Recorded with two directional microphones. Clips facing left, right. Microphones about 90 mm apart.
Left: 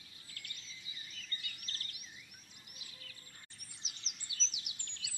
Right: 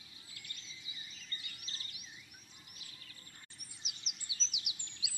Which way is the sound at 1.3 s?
20° right (ahead or behind).